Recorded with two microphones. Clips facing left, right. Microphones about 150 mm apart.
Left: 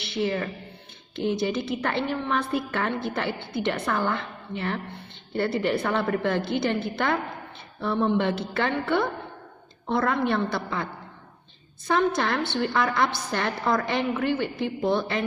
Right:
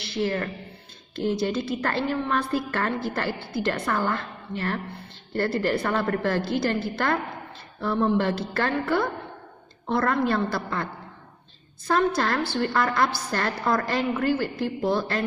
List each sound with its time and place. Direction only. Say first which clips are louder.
0.1 s a woman's voice: even; centre (ahead or behind)
11.9 s a woman's voice: right 1 dB; centre (ahead or behind)